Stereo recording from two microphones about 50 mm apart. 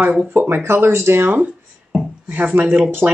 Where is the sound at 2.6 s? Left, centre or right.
Right.